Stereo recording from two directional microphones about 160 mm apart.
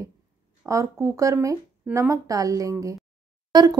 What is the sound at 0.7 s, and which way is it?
Speech, 20° right (ahead or behind).